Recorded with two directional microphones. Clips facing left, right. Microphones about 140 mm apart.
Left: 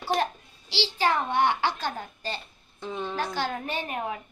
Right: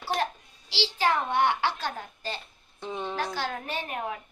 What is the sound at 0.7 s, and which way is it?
A child's voice, 5° right (ahead or behind).